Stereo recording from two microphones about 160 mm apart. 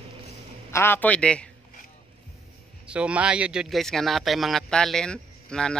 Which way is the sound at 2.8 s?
5° right (ahead or behind).